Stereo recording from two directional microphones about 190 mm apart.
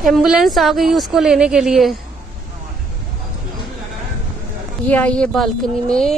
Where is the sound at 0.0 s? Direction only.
Centre (ahead or behind).